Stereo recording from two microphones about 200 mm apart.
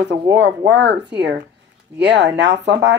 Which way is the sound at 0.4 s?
60° right (ahead or behind).